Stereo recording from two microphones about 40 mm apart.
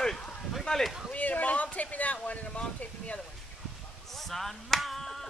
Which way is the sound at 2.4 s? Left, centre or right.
Left.